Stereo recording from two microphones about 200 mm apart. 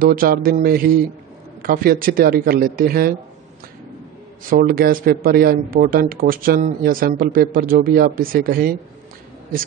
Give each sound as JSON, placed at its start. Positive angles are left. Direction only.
{"t": 0.0, "sound": "speech", "side_deg": -45}
{"t": 4.5, "sound": "speech", "side_deg": -45}